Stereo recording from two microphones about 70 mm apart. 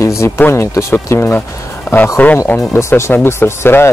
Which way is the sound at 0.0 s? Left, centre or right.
Left.